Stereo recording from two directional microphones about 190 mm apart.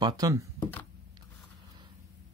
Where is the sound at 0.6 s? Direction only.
10° left (ahead or behind).